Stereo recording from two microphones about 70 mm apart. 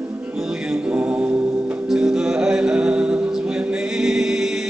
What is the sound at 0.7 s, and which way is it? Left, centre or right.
Music, centre.